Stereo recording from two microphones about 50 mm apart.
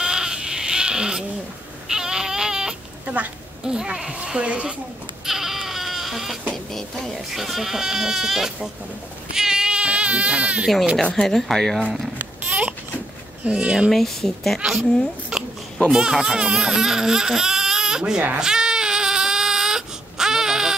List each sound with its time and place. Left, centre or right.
0.0 s sheep: centre
1.9 s a sound: centre
3.6 s speech: centre
5.2 s goat: centre
6.5 s music: centre
7.3 s speech: centre
9.3 s baby cry: centre
11.0 s speech: centre
11.2 s a woman's voice: centre
12.4 s a sound: right
13.5 s speech: centre
13.8 s a woman's voice: centre
14.6 s a child's voice: centre
18.4 s baby cry: centre